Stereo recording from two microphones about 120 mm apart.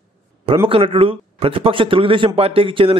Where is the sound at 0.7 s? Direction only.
50° right (ahead or behind).